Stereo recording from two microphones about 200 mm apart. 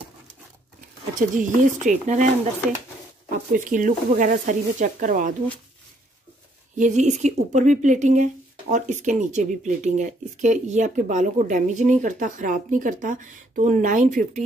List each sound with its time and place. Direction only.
0.7 s speech: 40° right (ahead or behind)
3.3 s speech: 40° right (ahead or behind)
6.8 s speech: 35° right (ahead or behind)